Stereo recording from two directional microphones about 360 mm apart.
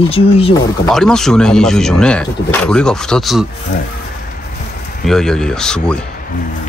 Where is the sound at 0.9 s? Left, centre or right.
Centre.